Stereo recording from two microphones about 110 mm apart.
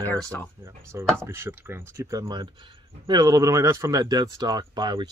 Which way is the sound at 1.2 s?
20° right (ahead or behind).